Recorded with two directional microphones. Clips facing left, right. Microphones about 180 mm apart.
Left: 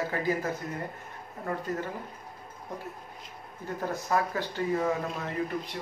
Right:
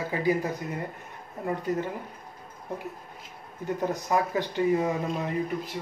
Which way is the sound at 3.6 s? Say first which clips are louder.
Right 4 dB; 20° right (ahead or behind).